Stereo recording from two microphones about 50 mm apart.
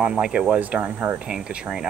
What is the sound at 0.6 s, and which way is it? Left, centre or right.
Speech, right.